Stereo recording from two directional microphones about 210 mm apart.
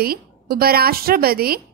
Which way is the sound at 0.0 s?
45° right (ahead or behind).